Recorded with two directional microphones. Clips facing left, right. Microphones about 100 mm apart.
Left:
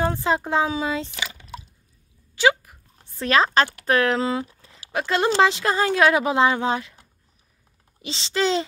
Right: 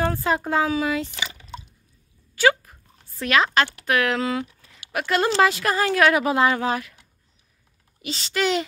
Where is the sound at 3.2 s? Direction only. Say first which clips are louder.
Left 1 dB; 30° left (ahead or behind).